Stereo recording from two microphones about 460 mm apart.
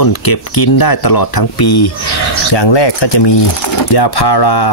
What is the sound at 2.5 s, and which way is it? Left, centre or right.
Speech, left.